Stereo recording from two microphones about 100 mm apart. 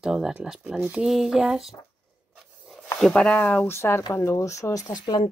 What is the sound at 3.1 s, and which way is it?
Speech, 10° left (ahead or behind).